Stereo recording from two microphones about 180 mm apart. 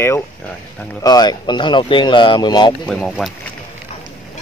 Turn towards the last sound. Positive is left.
turn(degrees=0)  # may be behind; listen again after turning